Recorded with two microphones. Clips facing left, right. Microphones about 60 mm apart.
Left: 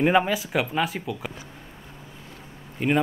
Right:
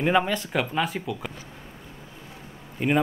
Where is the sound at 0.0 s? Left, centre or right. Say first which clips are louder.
Left 2 dB; centre.